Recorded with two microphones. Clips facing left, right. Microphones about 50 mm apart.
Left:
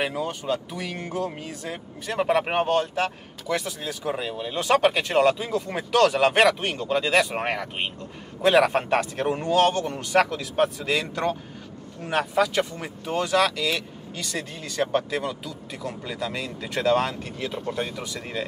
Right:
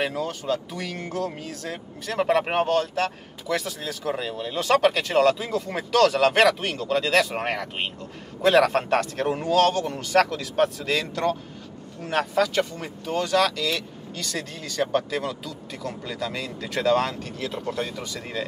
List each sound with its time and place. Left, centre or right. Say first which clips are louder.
0.0 s speech: even; centre